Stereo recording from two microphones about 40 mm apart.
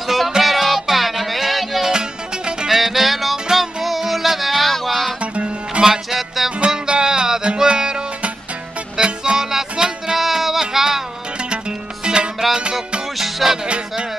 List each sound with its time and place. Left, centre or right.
0.0 s music: centre
1.9 s music: centre
2.7 s music: centre
5.2 s music: right
5.8 s music: centre
6.1 s music: centre
6.6 s music: right
11.5 s music: right
13.2 s music: centre